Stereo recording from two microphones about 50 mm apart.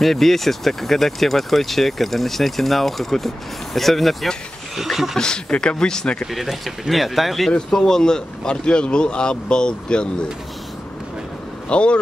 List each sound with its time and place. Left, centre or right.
0.0 s speech: centre
5.1 s speech: centre
6.3 s speech: centre
11.7 s speech: left